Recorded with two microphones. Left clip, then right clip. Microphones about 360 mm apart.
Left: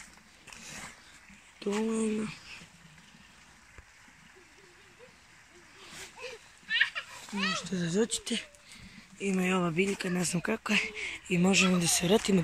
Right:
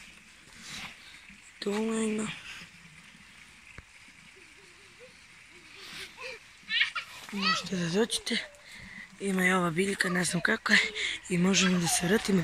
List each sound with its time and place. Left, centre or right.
1.6 s speech: centre
6.2 s children playing: left
7.5 s speech: centre